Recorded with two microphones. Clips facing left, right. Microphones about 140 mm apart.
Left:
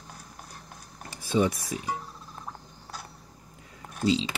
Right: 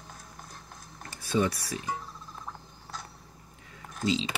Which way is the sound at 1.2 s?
20° left (ahead or behind).